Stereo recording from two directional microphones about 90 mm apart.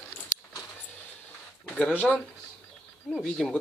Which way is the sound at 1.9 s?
20° left (ahead or behind).